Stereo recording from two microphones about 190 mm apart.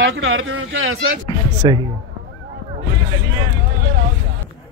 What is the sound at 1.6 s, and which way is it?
Speech, 25° right (ahead or behind).